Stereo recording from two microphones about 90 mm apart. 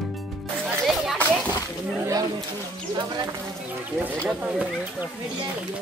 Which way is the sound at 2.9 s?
45° right (ahead or behind).